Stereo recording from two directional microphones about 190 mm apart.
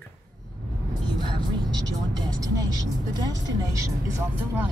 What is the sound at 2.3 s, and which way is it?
Vehicle, 20° right (ahead or behind).